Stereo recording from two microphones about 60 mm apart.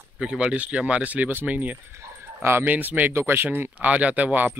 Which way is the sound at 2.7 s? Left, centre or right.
Right.